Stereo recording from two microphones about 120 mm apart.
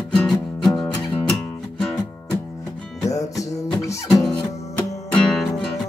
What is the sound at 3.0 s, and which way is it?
Music, 25° left (ahead or behind).